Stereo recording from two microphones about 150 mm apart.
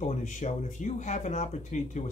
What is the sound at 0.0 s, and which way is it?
Speech, 55° left (ahead or behind).